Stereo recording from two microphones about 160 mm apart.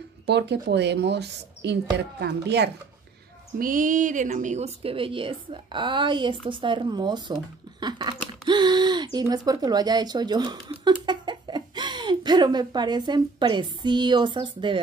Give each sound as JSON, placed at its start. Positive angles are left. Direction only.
{"t": 0.3, "sound": "speech", "side_deg": -90}
{"t": 3.5, "sound": "speech", "side_deg": -60}